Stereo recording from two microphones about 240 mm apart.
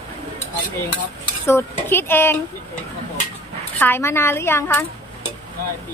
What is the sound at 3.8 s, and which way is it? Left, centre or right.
A woman's voice, centre.